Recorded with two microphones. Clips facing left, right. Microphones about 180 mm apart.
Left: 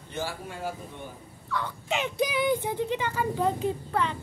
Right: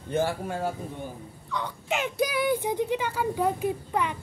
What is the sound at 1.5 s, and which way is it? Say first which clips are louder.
Speech: even; 20° right (ahead or behind).